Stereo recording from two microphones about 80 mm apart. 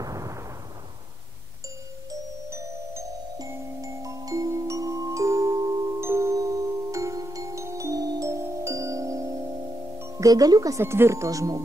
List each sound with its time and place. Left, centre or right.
0.0 s artillery fire: right
2.5 s glockenspiel: right
5.9 s glockenspiel: right
8.3 s music: right
10.1 s speech: right
10.8 s speech: right